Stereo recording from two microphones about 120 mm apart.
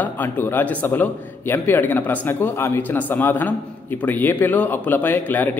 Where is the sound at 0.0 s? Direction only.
15° left (ahead or behind).